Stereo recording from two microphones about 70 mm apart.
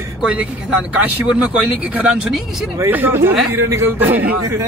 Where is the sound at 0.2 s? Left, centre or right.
Centre.